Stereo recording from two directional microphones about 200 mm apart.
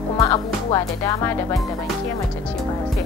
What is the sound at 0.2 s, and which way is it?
Speech, 15° left (ahead or behind).